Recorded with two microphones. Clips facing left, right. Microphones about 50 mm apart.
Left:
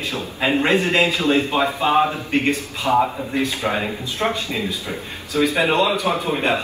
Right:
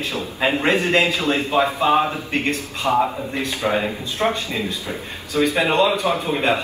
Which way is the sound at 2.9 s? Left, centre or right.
Centre.